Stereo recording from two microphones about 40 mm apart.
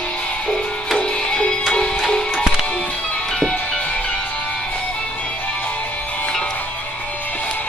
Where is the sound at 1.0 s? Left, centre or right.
Left.